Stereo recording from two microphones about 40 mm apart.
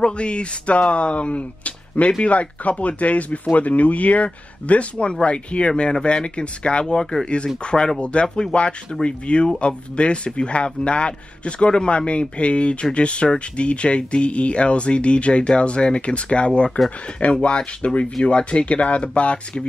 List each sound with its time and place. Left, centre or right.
0.0 s speech: left
4.9 s speech: left
7.0 s speech: centre
7.2 s speech: left